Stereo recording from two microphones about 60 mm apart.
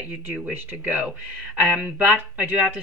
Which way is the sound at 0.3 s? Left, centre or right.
Right.